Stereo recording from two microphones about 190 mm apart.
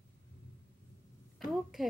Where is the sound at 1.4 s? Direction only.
Centre (ahead or behind).